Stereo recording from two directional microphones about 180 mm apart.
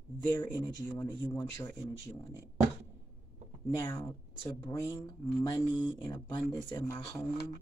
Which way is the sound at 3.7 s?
15° left (ahead or behind).